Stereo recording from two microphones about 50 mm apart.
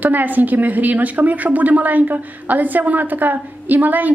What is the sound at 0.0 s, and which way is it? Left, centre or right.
A woman's voice, right.